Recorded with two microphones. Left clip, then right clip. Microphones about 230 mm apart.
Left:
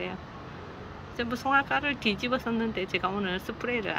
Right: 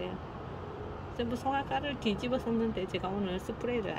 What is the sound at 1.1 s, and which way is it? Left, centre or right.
Speech, left.